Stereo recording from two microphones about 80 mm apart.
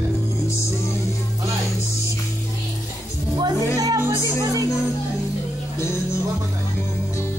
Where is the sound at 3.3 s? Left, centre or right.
Right.